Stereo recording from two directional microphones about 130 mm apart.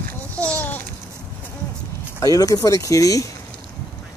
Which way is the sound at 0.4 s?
10° left (ahead or behind).